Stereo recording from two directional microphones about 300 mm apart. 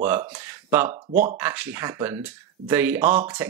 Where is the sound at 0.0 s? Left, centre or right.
Centre.